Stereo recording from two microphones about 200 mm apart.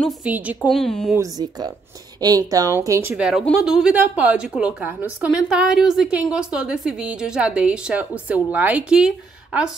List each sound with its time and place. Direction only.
0.0 s a woman's voice: 5° right (ahead or behind)
1.1 s a woman's voice: 20° right (ahead or behind)